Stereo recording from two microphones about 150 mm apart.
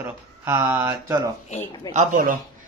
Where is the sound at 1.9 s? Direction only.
55° right (ahead or behind).